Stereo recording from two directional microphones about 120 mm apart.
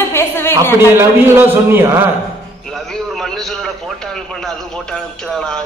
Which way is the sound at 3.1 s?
5° left (ahead or behind).